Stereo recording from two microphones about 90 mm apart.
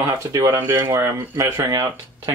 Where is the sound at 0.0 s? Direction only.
35° right (ahead or behind).